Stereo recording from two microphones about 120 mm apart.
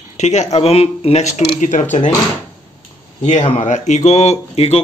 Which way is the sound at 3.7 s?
80° left.